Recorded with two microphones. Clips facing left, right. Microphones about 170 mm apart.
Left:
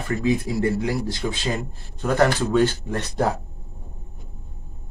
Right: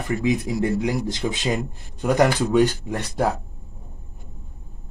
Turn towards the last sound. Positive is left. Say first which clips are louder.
# even
turn(degrees=-10)  # may be behind; listen again after turning